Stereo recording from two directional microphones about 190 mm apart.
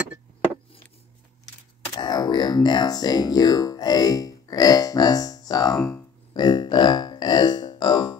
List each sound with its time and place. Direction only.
2.0 s speech: 20° left (ahead or behind)
5.9 s music: 20° left (ahead or behind)